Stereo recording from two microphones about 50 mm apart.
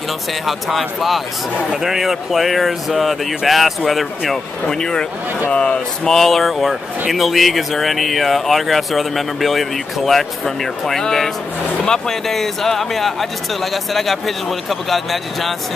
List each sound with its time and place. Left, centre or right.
0.5 s speech: centre
4.6 s speech: centre
6.0 s speech: centre